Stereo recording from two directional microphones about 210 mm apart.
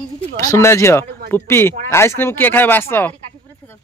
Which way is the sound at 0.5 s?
15° left (ahead or behind).